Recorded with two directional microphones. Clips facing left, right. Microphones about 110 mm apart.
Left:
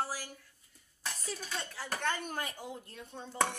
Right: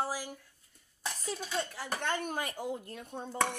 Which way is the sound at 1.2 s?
20° right (ahead or behind).